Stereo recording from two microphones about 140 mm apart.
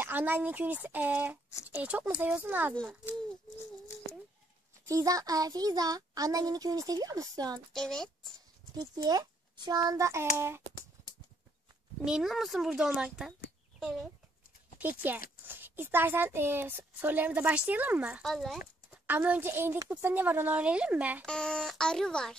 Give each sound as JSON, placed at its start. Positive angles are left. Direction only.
{"t": 0.0, "sound": "a woman's voice", "side_deg": -15}
{"t": 4.8, "sound": "a child's voice", "side_deg": -25}
{"t": 7.7, "sound": "speech", "side_deg": 5}
{"t": 8.7, "sound": "a child's voice", "side_deg": -25}
{"t": 12.0, "sound": "speech", "side_deg": 0}
{"t": 14.8, "sound": "a woman's voice", "side_deg": -10}
{"t": 18.2, "sound": "speech", "side_deg": 0}
{"t": 18.9, "sound": "a woman's voice", "side_deg": -10}
{"t": 21.3, "sound": "speech", "side_deg": 5}